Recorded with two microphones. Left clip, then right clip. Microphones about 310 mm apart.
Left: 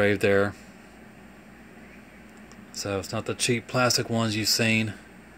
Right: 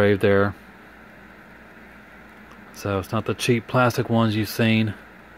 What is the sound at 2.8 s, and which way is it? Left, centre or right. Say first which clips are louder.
Speech: right 4 dB; right.